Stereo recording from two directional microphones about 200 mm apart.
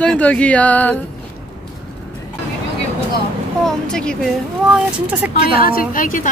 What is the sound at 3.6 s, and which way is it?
Speech, 5° left (ahead or behind).